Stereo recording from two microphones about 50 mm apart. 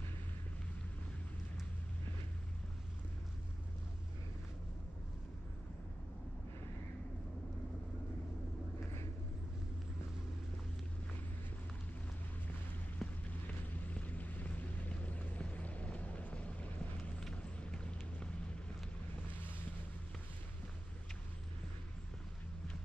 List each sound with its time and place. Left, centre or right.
13.0 s a sound: centre
13.8 s music: left
17.2 s vehicle: centre